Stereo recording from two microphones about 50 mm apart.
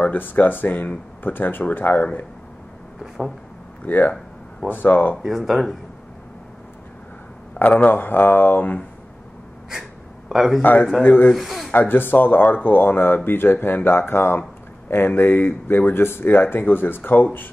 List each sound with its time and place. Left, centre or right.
0.0 s speech: left
3.0 s speech: centre
3.8 s speech: left
5.2 s speech: centre
7.6 s a sound: left
7.9 s speech: left
10.3 s a man's voice: centre
10.6 s speech: left
11.3 s speech: centre
11.7 s speech: left